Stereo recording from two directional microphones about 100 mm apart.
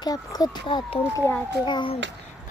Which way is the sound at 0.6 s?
55° left (ahead or behind).